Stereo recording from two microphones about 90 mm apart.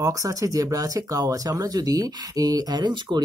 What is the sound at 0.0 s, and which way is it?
Speech, 40° right (ahead or behind).